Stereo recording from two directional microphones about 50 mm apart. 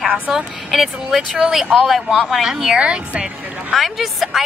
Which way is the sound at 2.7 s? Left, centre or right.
Right.